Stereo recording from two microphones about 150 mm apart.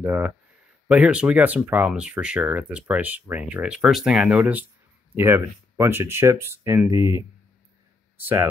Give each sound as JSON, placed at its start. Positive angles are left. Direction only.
{"t": 0.0, "sound": "speech", "side_deg": -10}